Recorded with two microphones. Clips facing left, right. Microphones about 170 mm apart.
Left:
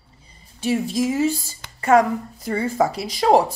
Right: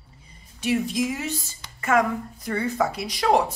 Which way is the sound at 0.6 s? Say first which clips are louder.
Left 2 dB; 30° left (ahead or behind).